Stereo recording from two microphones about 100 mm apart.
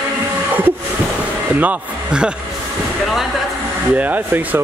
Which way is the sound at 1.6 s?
10° right (ahead or behind).